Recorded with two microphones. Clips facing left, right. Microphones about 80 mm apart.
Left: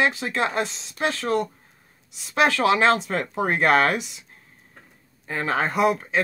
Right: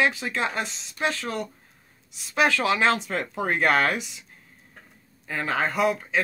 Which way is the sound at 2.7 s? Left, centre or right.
Left.